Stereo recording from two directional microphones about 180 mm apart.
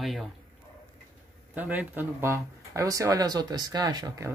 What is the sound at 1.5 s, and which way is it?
Speech, 10° right (ahead or behind).